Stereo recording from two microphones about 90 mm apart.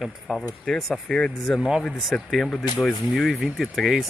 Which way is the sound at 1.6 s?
5° right (ahead or behind).